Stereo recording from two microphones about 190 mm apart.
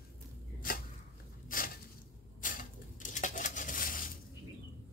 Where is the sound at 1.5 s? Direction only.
45° left (ahead or behind).